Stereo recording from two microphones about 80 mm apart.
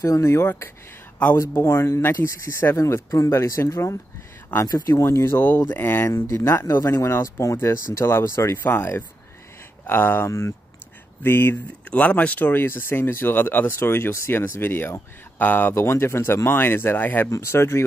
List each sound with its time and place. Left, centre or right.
0.0 s speech: left
11.9 s speech: centre
17.3 s speech: left